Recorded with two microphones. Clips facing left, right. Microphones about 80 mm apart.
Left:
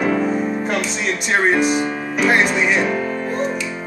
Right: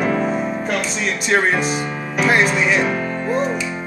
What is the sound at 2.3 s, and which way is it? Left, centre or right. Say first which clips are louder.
Music: right 2 dB; centre.